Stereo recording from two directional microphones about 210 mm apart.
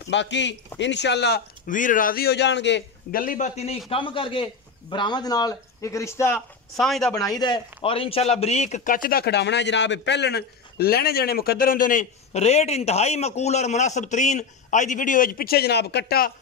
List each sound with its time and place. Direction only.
0.1 s speech: 55° left (ahead or behind); by 7.2 s centre (ahead or behind)
7.2 s speech: 20° left (ahead or behind); by 16.3 s 50° left (ahead or behind)